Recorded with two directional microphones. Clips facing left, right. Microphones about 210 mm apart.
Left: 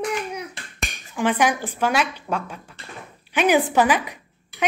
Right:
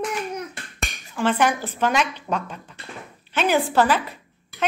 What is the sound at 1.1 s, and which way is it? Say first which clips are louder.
A woman's voice: even; 10° left (ahead or behind).